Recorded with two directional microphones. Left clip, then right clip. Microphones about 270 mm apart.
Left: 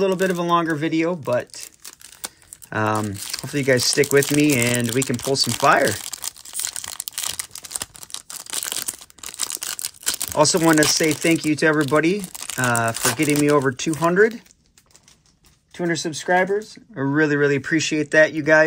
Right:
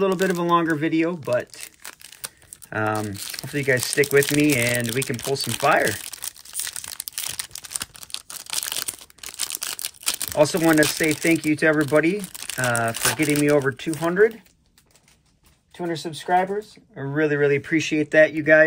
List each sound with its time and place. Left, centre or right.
0.0 s speech: centre
2.2 s crumpling: centre
13.7 s speech: centre
15.9 s speech: left
17.2 s speech: centre